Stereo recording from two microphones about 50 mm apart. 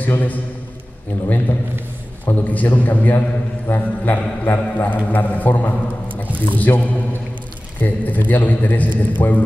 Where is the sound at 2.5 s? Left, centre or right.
Left.